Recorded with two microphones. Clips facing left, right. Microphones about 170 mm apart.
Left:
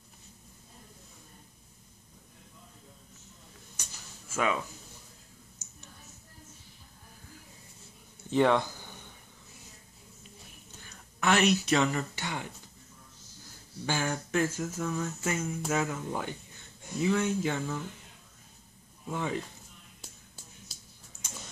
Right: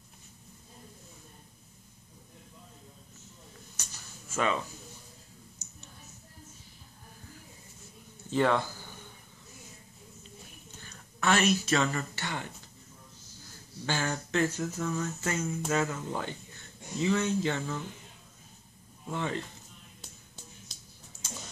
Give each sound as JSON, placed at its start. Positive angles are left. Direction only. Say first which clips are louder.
{"t": 4.3, "sound": "speech", "louder": "even", "side_deg": 10}
{"t": 8.3, "sound": "speech", "louder": "left 2 dB", "side_deg": 15}
{"t": 11.1, "sound": "speech", "louder": "left 1 dB", "side_deg": 15}
{"t": 13.8, "sound": "speech", "louder": "left 1 dB", "side_deg": 10}
{"t": 19.0, "sound": "speech", "louder": "left 1 dB", "side_deg": 10}
{"t": 20.0, "sound": "a sound", "louder": "right 1 dB", "side_deg": 5}